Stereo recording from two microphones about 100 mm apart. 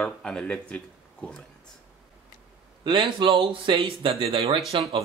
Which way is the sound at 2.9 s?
55° right (ahead or behind).